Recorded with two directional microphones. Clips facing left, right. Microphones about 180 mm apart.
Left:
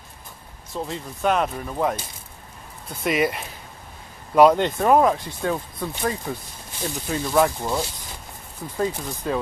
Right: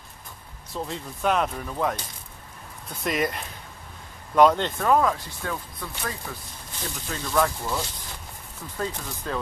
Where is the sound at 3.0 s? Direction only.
5° left (ahead or behind).